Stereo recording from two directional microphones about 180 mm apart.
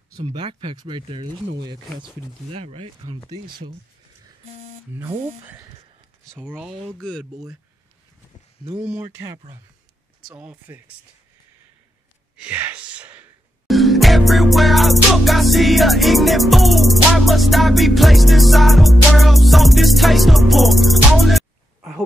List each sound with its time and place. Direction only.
0.1 s speech: 25° right (ahead or behind)
4.9 s speech: 10° right (ahead or behind)
10.2 s speech: 10° right (ahead or behind)
12.4 s speech: 10° right (ahead or behind)